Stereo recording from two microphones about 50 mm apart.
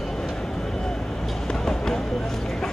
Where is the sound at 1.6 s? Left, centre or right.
Centre.